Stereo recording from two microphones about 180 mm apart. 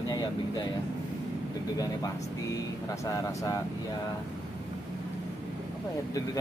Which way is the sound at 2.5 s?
20° left (ahead or behind).